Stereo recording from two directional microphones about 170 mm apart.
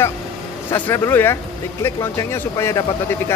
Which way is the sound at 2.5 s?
15° left (ahead or behind).